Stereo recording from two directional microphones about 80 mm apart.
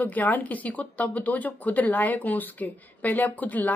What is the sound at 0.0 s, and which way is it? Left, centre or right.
Speech, left.